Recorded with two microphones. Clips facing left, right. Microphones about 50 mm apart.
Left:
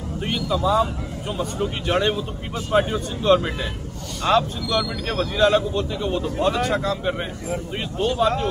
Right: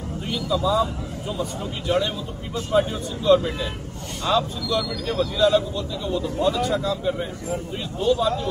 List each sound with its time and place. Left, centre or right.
0.3 s speech: left